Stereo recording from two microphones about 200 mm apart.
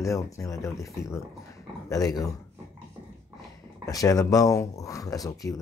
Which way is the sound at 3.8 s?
15° left (ahead or behind).